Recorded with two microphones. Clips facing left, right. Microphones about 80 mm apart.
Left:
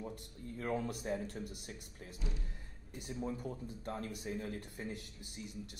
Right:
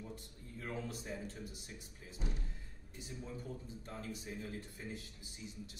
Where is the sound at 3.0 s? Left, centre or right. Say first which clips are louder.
Left 7 dB; left.